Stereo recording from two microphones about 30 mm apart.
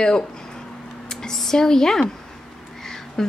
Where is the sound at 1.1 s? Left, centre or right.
Centre.